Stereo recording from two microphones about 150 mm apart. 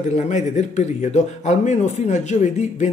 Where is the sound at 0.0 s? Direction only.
55° left (ahead or behind).